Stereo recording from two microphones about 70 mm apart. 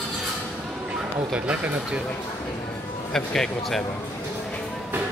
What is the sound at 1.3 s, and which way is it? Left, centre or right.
Speech, centre.